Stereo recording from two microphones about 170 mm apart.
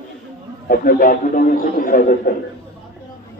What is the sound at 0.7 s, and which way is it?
A man's voice, 60° left (ahead or behind).